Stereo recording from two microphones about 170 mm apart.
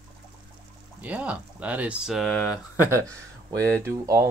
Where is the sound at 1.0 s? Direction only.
10° right (ahead or behind).